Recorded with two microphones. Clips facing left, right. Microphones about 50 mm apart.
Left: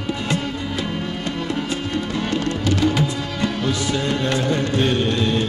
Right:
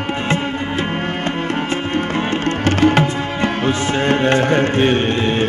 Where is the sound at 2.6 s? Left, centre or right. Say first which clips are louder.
Right 7 dB; right.